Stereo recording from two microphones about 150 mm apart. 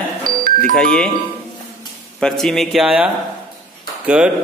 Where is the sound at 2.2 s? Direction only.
5° left (ahead or behind).